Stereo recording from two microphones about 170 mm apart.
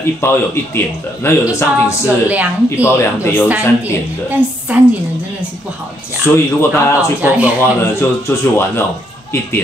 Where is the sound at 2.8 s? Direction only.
15° left (ahead or behind).